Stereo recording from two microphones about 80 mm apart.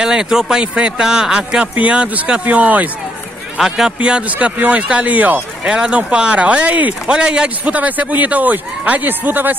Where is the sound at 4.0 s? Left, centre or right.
Centre.